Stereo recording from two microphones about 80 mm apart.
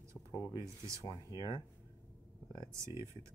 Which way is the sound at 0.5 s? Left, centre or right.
Right.